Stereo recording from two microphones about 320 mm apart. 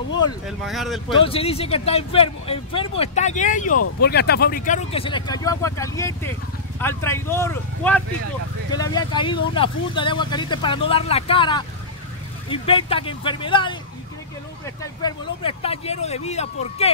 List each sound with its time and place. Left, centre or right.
0.5 s speech: centre
1.1 s speech: centre
14.8 s speech: centre